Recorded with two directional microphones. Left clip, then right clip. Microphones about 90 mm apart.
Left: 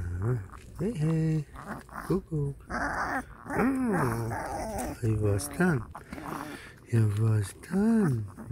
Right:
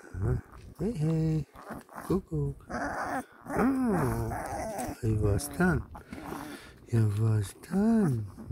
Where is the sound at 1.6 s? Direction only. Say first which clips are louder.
Left 1 dB; 35° right (ahead or behind).